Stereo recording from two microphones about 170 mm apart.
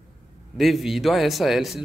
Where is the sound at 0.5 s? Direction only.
Centre (ahead or behind).